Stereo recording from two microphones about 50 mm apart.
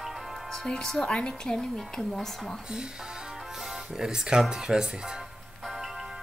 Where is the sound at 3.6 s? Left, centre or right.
Centre.